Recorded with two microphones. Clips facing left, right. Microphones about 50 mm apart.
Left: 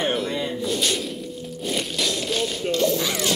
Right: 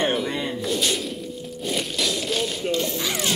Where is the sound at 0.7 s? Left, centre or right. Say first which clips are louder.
Right 1 dB; centre.